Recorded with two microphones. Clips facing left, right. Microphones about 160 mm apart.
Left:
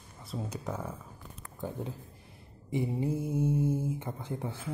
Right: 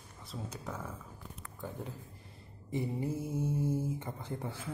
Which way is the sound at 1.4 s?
25° left (ahead or behind).